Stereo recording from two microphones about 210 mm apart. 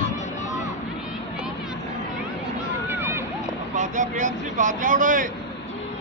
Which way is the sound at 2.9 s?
10° right (ahead or behind).